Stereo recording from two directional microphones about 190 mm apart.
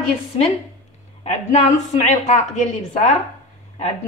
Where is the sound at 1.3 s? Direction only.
40° left (ahead or behind).